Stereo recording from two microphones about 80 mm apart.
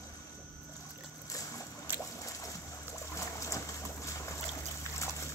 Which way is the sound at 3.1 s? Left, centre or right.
Left.